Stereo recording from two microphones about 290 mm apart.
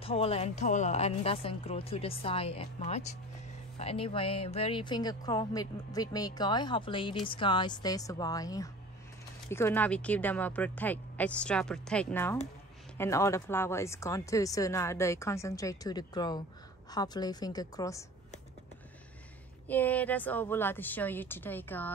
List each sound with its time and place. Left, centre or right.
0.0 s a woman's voice: centre
19.7 s speech: centre